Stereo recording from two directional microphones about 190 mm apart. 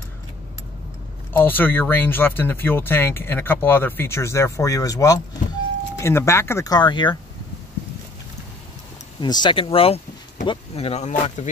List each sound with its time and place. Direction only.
1.3 s speech: 10° left (ahead or behind)
9.2 s speech: 25° left (ahead or behind); by 11.5 s 40° left (ahead or behind)